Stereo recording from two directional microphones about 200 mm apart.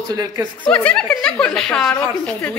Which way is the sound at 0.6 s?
5° left (ahead or behind).